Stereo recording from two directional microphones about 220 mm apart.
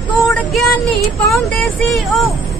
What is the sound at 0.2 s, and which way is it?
Music, centre (ahead or behind).